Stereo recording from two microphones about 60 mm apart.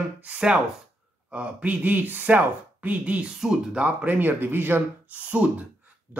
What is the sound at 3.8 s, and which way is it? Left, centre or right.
Speech, right.